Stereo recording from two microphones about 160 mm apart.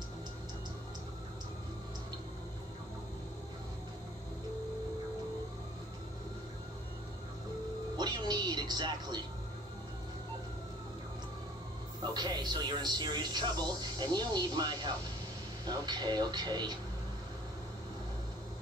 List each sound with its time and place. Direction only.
8.0 s music: 25° right (ahead or behind)
12.0 s a man's voice: 25° right (ahead or behind)